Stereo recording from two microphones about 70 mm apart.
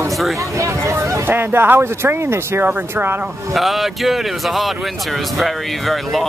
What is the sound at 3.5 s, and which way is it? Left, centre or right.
Speech, centre.